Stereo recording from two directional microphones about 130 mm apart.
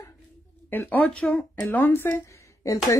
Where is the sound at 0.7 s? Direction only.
15° left (ahead or behind).